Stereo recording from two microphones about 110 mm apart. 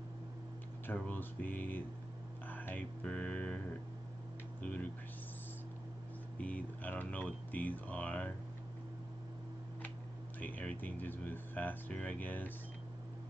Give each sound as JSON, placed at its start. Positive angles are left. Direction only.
{"t": 0.8, "sound": "speech", "side_deg": 15}
{"t": 6.3, "sound": "speech", "side_deg": 15}
{"t": 10.4, "sound": "speech", "side_deg": 15}